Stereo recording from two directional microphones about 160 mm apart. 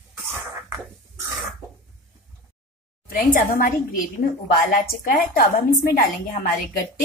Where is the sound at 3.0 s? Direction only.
60° left (ahead or behind).